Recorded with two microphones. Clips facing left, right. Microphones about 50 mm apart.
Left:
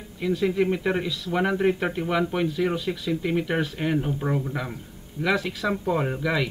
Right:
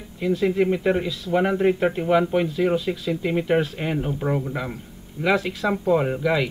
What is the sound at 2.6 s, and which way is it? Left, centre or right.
Speech, right.